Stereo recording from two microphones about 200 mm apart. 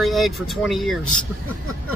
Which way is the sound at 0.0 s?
Centre (ahead or behind).